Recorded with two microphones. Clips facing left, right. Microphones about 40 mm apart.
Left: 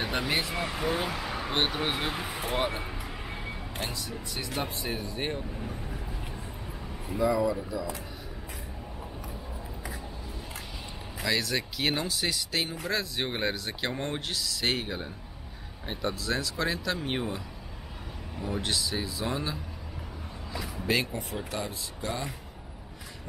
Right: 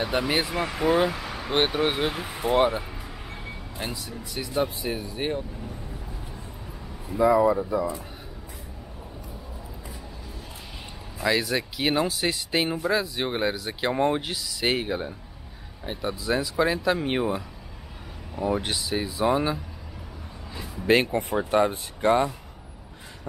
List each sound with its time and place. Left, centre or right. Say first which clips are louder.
0.1 s speech: right 4 dB; centre
1.1 s a sound: even; centre
1.5 s speech: right 7 dB; centre
2.8 s a sound: left 1 dB; centre
4.1 s speech: right 4 dB; centre
5.6 s vehicle: even; centre
7.2 s speech: right 7 dB; right
11.2 s speech: right 5 dB; centre
20.8 s speech: right 8 dB; right